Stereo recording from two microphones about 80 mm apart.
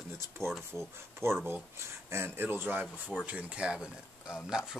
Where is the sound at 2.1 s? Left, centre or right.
Right.